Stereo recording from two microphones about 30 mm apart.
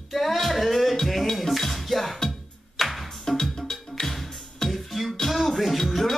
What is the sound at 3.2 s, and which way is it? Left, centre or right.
Music, centre.